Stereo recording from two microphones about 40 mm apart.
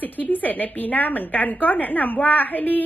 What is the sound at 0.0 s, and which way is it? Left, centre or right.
A woman's voice, left.